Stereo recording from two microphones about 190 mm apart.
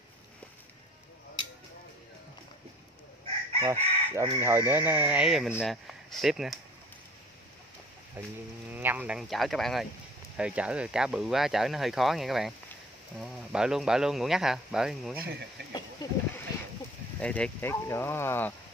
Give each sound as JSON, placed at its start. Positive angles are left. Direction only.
{"t": 3.6, "sound": "chicken", "side_deg": -15}
{"t": 4.3, "sound": "speech", "side_deg": -15}
{"t": 8.7, "sound": "speech", "side_deg": -10}
{"t": 15.7, "sound": "a sound", "side_deg": 20}
{"t": 17.2, "sound": "speech", "side_deg": 5}